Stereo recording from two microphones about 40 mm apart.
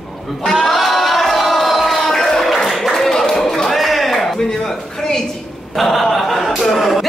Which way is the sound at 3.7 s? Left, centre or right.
Centre.